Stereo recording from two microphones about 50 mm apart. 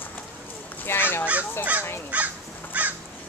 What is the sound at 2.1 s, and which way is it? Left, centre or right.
Crow, right.